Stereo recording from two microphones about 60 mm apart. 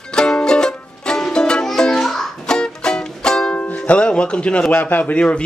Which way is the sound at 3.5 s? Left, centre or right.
Left.